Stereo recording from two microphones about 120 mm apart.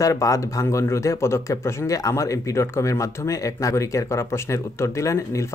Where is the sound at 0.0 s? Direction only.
30° left (ahead or behind).